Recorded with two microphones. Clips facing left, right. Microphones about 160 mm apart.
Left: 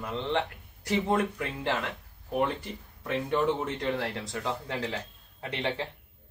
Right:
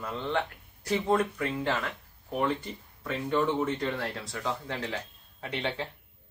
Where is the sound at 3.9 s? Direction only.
20° left (ahead or behind).